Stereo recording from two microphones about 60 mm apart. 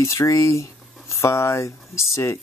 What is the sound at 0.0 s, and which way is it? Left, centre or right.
Speech, left.